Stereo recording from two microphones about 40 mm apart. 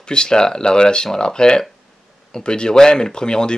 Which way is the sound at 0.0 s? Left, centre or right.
Left.